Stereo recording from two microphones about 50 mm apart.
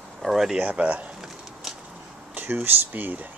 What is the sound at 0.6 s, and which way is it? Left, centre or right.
Speech, right.